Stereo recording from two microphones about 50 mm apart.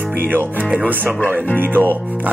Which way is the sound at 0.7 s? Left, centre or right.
Right.